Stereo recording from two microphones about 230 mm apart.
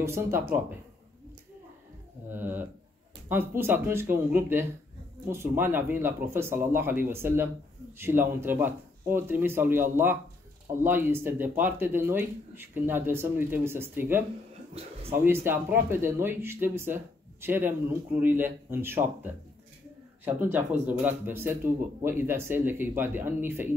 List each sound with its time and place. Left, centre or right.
0.0 s speech: centre
2.2 s speech: centre
14.7 s speech: right
15.1 s speech: centre
20.2 s speech: centre